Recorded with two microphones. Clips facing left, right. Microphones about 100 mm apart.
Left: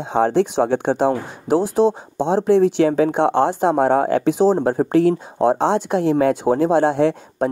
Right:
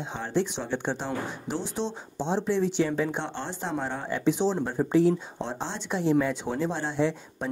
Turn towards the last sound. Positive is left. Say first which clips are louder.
# left 9 dB
turn(degrees=55)  # may be behind; listen again after turning